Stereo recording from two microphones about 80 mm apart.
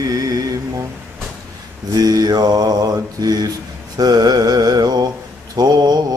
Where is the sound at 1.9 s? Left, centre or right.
Right.